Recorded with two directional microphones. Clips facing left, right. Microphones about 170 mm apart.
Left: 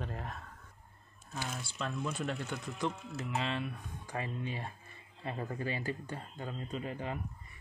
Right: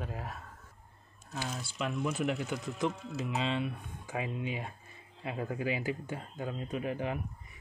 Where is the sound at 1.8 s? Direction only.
10° right (ahead or behind).